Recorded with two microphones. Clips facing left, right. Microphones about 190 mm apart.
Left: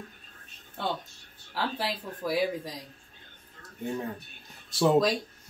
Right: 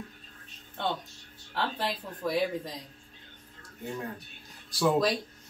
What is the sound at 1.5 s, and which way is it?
Speech, 5° left (ahead or behind).